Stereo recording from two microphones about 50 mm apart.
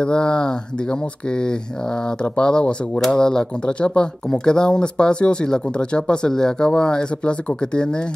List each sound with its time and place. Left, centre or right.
0.0 s speech: centre